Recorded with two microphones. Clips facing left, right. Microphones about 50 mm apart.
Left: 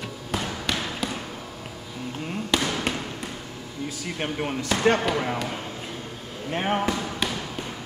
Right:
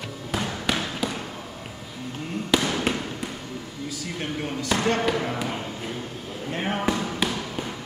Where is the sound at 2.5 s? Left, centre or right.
Centre.